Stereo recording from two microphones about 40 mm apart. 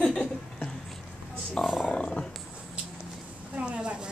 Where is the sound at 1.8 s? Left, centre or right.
Left.